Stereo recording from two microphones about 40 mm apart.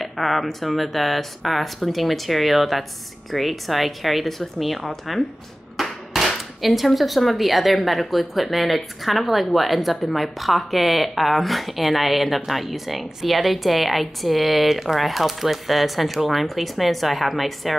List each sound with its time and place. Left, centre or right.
0.0 s speech: centre